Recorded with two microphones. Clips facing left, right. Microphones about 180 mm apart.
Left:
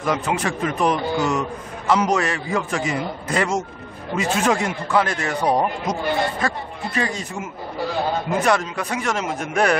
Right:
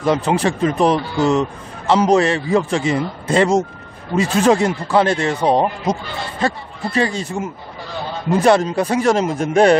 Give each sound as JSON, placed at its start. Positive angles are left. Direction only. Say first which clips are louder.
{"t": 0.0, "sound": "a man's voice", "louder": "right 6 dB", "side_deg": -30}